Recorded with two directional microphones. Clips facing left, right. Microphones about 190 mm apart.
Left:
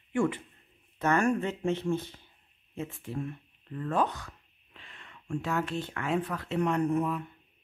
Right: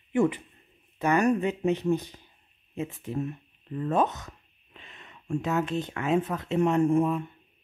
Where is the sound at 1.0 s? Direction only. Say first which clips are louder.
Right 3 dB; 15° right (ahead or behind).